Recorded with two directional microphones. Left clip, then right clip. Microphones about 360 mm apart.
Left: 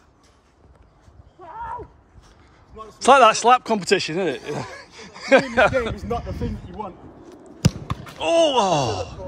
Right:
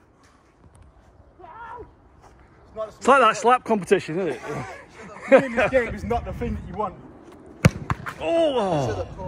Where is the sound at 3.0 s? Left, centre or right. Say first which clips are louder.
Left 4 dB; centre.